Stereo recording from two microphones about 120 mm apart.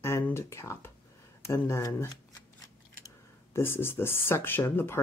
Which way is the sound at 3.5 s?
20° left (ahead or behind).